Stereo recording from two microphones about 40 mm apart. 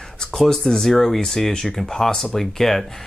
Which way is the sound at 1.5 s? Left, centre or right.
Centre.